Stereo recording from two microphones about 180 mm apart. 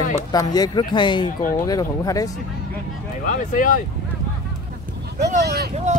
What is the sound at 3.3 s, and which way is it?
Speech, 45° left (ahead or behind).